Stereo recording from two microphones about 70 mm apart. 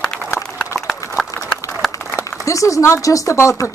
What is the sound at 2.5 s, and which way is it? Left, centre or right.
Speech, left.